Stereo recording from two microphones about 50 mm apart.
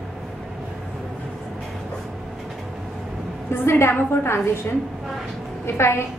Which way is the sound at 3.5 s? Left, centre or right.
Left.